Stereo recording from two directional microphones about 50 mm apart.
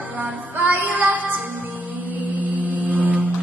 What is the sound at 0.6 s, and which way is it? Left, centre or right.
Music, right.